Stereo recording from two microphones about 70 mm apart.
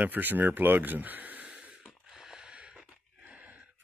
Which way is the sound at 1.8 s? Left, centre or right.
Centre.